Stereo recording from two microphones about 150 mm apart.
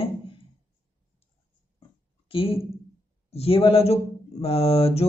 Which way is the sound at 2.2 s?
35° left (ahead or behind).